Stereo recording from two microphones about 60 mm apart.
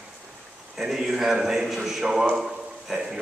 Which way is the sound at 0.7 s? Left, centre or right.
Centre.